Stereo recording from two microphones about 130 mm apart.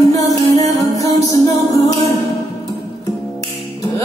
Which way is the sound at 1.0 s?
30° left (ahead or behind).